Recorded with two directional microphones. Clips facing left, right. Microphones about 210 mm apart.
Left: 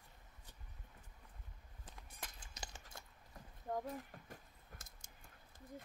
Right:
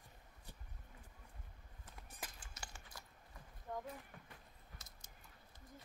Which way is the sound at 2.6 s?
20° left (ahead or behind).